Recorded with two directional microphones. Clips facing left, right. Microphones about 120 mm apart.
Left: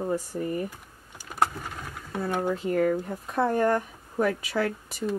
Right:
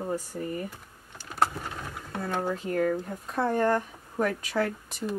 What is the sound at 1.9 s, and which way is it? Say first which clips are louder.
Sewing machine: left 6 dB; 5° left (ahead or behind).